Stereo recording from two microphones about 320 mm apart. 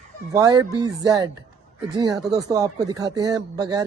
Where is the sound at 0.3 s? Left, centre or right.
Centre.